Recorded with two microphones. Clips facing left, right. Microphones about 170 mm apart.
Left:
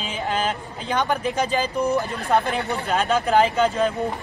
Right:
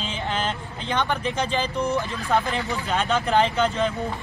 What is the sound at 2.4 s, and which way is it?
Speech, 60° left (ahead or behind).